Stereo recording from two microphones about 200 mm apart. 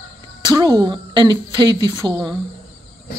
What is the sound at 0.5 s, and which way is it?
A woman's voice, 20° right (ahead or behind).